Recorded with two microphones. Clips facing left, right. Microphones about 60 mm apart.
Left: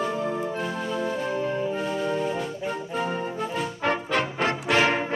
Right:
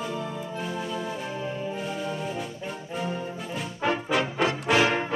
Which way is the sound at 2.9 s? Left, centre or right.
Left.